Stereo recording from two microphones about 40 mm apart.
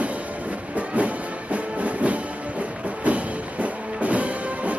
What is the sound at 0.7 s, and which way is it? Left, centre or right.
Music, right.